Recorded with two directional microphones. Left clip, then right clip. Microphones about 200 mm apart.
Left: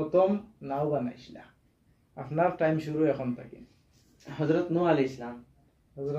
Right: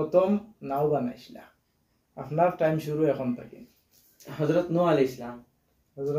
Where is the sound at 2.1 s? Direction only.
15° left (ahead or behind).